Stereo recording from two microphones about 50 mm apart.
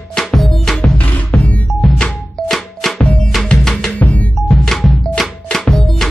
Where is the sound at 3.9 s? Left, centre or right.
Left.